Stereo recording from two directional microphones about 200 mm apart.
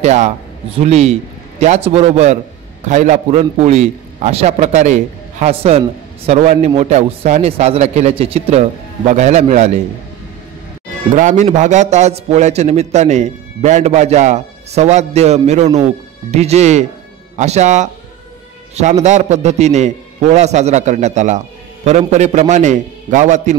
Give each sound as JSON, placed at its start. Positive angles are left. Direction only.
{"t": 0.0, "sound": "a man's voice", "side_deg": -35}
{"t": 11.1, "sound": "a man's voice", "side_deg": -35}